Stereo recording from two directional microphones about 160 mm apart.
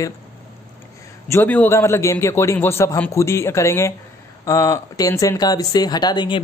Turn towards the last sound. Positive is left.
turn(degrees=25)  # may be behind; listen again after turning